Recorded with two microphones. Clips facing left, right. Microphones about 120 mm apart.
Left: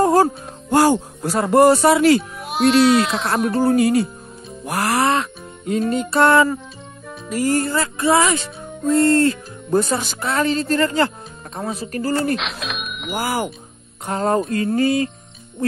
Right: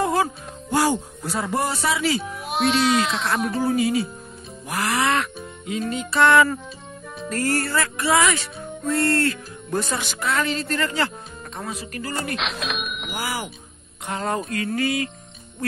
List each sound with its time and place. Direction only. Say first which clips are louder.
0.0 s music: left 7 dB; 40° left (ahead or behind)
0.7 s speech: left 6 dB; 60° left (ahead or behind)
2.5 s speech: left 6 dB; centre (ahead or behind)
3.5 s speech: left 7 dB; 50° left (ahead or behind)
4.6 s music: left 4 dB; 50° left (ahead or behind)
7.2 s speech: left 4 dB; 10° left (ahead or behind); by 12.1 s 35° left (ahead or behind)
12.4 s a sound: even; centre (ahead or behind)
13.1 s music: left 8 dB; 45° left (ahead or behind)
14.0 s speech: left 7 dB; 40° left (ahead or behind)